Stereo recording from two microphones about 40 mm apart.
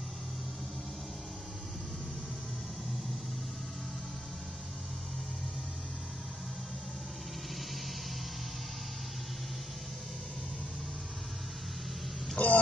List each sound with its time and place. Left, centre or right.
12.4 s speech: left